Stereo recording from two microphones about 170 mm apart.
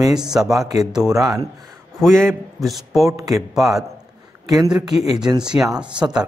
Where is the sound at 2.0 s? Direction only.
5° left (ahead or behind).